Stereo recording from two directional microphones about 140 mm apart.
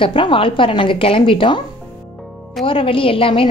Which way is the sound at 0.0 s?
40° left (ahead or behind).